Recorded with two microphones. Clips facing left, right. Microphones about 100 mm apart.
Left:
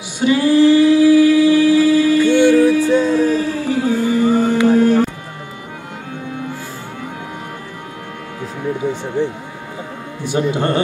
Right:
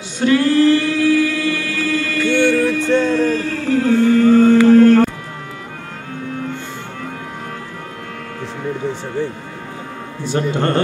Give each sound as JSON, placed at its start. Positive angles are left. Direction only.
{"t": 0.2, "sound": "singing", "side_deg": 10}
{"t": 8.7, "sound": "speech", "side_deg": 15}